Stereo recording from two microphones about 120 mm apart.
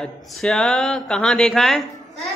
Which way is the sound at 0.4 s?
5° left (ahead or behind).